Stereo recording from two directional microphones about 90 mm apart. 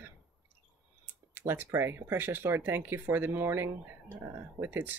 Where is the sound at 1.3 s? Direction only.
25° right (ahead or behind).